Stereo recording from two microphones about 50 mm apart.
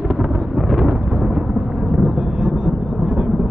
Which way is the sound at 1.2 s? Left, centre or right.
Centre.